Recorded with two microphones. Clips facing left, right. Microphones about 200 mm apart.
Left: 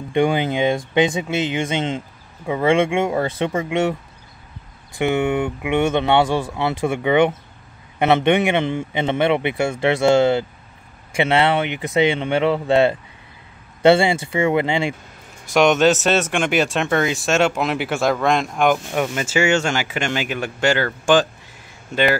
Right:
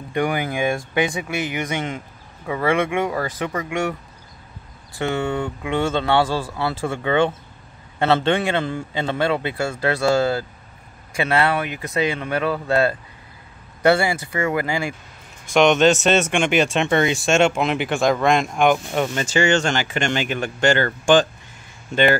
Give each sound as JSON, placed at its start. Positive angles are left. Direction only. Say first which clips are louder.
{"t": 0.1, "sound": "speech", "louder": "left 4 dB", "side_deg": 25}
{"t": 4.9, "sound": "speech", "louder": "left 4 dB", "side_deg": 20}
{"t": 15.5, "sound": "speech", "louder": "even", "side_deg": 5}